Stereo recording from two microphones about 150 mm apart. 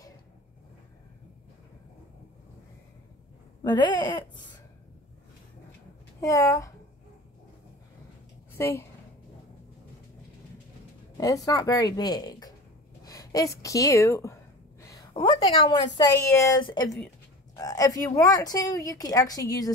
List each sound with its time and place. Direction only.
3.6 s speech: 30° left (ahead or behind)
6.2 s speech: 20° left (ahead or behind)
8.5 s speech: 15° left (ahead or behind)
11.1 s speech: 20° left (ahead or behind)
13.0 s a sound: 25° left (ahead or behind)
13.6 s a woman's voice: 20° left (ahead or behind)
16.0 s speech: 20° left (ahead or behind)